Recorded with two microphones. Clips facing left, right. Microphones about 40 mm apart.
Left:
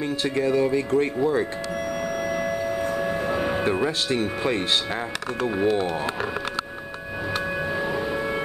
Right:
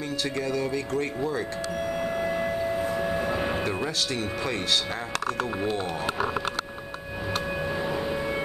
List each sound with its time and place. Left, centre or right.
0.2 s speech: left
2.2 s a sound: centre
3.6 s speech: centre
5.6 s speech: centre